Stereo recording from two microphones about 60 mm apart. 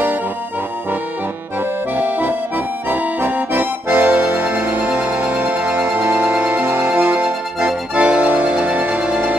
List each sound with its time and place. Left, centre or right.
2.0 s accordion: right
4.8 s music: right
5.2 s music: right
6.0 s music: right
6.9 s music: right
7.2 s organ: right